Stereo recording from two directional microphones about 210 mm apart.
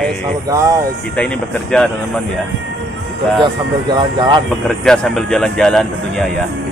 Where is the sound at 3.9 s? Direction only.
20° right (ahead or behind).